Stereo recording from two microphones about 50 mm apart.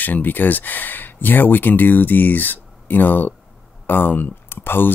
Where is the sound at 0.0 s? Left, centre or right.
Left.